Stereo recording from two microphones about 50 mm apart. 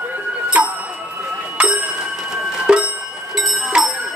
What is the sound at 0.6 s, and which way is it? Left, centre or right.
Music, right.